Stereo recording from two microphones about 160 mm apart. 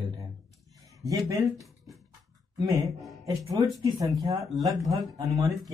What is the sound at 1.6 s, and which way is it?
Music, centre (ahead or behind).